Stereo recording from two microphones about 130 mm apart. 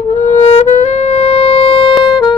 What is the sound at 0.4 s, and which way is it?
Music, 60° left (ahead or behind).